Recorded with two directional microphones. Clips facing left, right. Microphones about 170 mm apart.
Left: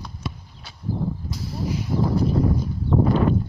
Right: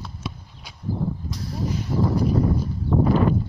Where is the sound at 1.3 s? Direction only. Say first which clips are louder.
Even; 10° left (ahead or behind).